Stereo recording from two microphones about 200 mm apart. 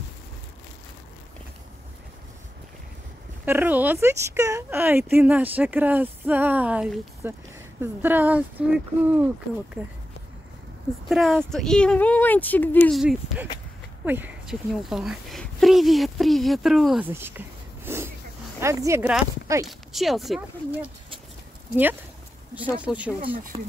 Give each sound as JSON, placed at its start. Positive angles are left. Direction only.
{"t": 3.4, "sound": "a woman's voice", "side_deg": -10}
{"t": 11.1, "sound": "speech", "side_deg": 0}
{"t": 13.0, "sound": "a woman's voice", "side_deg": -5}
{"t": 17.8, "sound": "a sound", "side_deg": -10}
{"t": 18.6, "sound": "a woman's voice", "side_deg": -15}
{"t": 19.6, "sound": "speech", "side_deg": 0}
{"t": 22.8, "sound": "a woman's voice", "side_deg": -5}
{"t": 23.3, "sound": "speech", "side_deg": -45}